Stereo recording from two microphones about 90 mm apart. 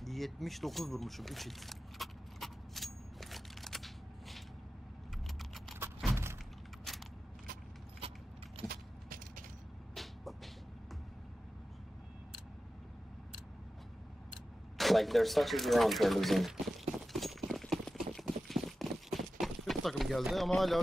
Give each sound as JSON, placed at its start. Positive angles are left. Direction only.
{"t": 0.0, "sound": "keys jangling", "side_deg": 0}
{"t": 6.9, "sound": "a sound", "side_deg": 5}
{"t": 8.0, "sound": "keys jangling", "side_deg": -90}
{"t": 9.9, "sound": "music", "side_deg": 0}
{"t": 14.8, "sound": "speech", "side_deg": 0}
{"t": 17.0, "sound": "clip-clop", "side_deg": 0}